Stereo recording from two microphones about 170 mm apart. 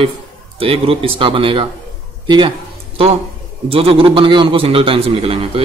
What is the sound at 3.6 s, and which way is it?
A man's voice, 35° right (ahead or behind).